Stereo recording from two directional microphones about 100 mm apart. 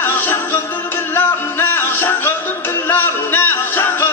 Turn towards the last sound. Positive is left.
turn(degrees=20)  # may be behind; listen again after turning